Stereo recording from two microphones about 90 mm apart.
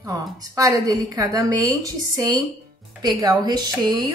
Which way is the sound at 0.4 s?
40° right (ahead or behind).